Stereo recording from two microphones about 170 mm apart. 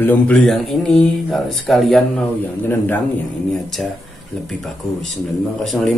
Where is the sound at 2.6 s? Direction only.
10° left (ahead or behind).